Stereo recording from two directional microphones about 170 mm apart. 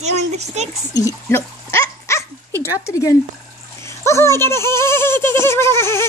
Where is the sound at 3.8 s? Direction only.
15° left (ahead or behind).